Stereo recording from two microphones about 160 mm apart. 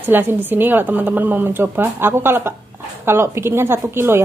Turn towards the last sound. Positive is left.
turn(degrees=-15)  # may be behind; listen again after turning